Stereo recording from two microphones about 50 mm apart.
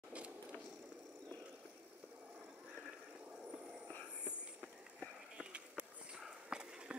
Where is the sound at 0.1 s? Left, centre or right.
Right.